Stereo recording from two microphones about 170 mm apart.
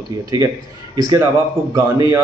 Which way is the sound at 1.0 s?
25° right (ahead or behind).